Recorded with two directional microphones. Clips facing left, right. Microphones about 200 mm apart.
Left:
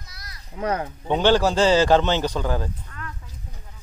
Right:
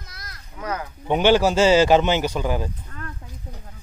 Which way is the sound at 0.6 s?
30° left (ahead or behind).